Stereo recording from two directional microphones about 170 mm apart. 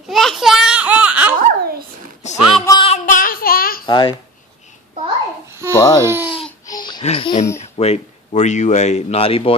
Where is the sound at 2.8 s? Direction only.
45° left (ahead or behind).